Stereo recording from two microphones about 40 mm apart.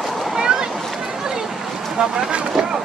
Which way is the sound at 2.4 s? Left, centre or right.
Centre.